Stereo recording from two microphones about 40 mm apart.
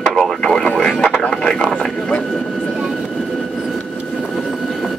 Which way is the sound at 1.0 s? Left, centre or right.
Left.